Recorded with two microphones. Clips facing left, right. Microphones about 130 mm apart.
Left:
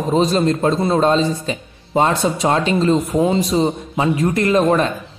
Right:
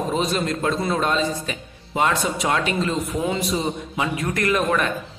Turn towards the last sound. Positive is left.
turn(degrees=30)  # may be behind; listen again after turning